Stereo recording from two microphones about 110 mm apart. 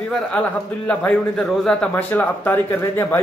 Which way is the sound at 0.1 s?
15° left (ahead or behind).